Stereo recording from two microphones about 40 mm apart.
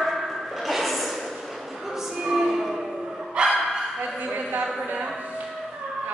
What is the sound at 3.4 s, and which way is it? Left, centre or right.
Bow-wow, right.